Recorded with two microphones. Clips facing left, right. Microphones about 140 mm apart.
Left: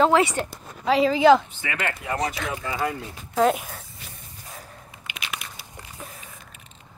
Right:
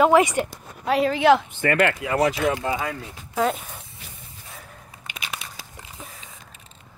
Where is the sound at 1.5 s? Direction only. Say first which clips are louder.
Right 9 dB; 55° right (ahead or behind); by 2.3 s 80° right.